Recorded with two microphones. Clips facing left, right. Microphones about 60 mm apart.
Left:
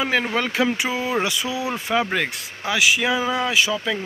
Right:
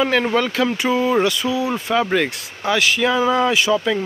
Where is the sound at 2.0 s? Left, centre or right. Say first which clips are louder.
Right 5 dB; centre.